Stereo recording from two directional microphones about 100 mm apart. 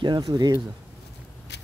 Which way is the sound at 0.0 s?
45° right (ahead or behind).